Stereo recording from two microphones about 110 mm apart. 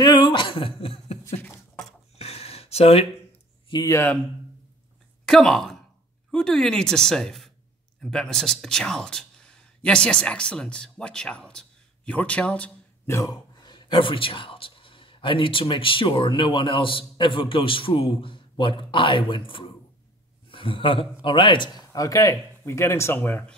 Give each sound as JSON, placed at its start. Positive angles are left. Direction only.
{"t": 0.0, "sound": "a sound", "side_deg": 45}
{"t": 3.8, "sound": "speech", "side_deg": 25}
{"t": 5.2, "sound": "speech", "side_deg": 5}
{"t": 13.0, "sound": "a man's voice", "side_deg": 30}